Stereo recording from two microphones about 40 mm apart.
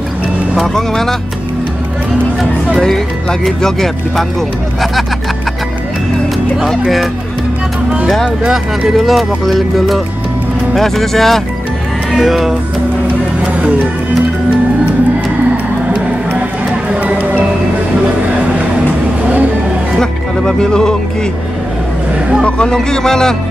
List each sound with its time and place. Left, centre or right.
0.7 s speech: centre
3.4 s speech: centre
8.9 s speech: centre
20.0 s music: centre
22.4 s speech: left